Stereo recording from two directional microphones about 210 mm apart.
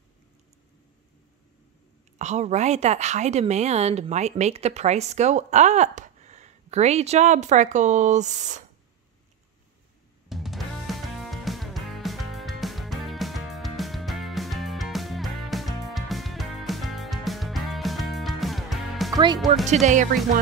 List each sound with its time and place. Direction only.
2.1 s a woman's voice: 35° right (ahead or behind)
10.3 s music: centre (ahead or behind)
19.1 s speech: 20° right (ahead or behind)
19.7 s a woman's voice: 35° right (ahead or behind)